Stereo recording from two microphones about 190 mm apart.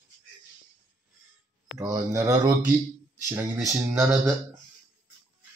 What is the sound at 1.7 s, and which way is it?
Speech, 15° right (ahead or behind).